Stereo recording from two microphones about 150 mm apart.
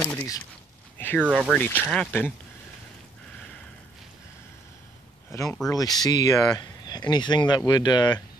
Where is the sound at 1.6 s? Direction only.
10° left (ahead or behind).